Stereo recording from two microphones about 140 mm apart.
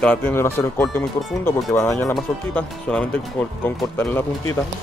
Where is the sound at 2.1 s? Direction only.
5° left (ahead or behind).